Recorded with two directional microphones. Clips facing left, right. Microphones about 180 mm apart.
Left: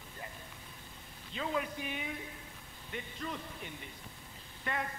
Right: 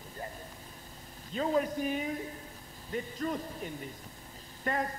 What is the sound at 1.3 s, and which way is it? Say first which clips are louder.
A man's voice: right 7 dB; 40° right (ahead or behind).